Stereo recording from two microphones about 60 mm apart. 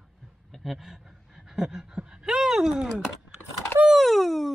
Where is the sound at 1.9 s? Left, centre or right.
Centre.